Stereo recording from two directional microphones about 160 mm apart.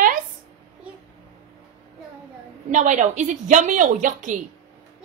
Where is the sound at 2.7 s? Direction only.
50° right (ahead or behind).